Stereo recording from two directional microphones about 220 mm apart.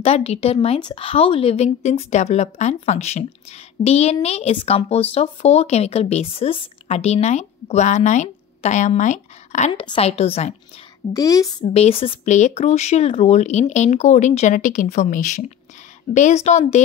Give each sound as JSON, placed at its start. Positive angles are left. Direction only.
{"t": 0.0, "sound": "speech", "side_deg": 30}
{"t": 11.1, "sound": "a woman's voice", "side_deg": 15}
{"t": 11.6, "sound": "speech", "side_deg": 25}